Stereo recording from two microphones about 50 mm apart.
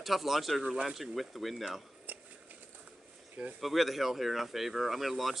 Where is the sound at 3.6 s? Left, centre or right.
Centre.